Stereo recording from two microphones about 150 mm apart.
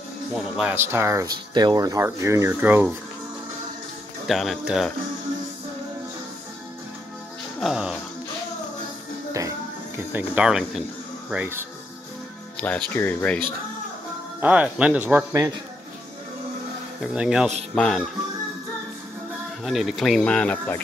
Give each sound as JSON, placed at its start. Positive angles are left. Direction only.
{"t": 0.6, "sound": "speech", "side_deg": -10}
{"t": 4.3, "sound": "speech", "side_deg": 0}
{"t": 7.6, "sound": "speech", "side_deg": -5}
{"t": 9.9, "sound": "speech", "side_deg": -10}
{"t": 12.5, "sound": "speech", "side_deg": 10}
{"t": 14.4, "sound": "speech", "side_deg": -10}
{"t": 17.0, "sound": "speech", "side_deg": -5}
{"t": 17.7, "sound": "speech", "side_deg": 5}
{"t": 19.6, "sound": "speech", "side_deg": 0}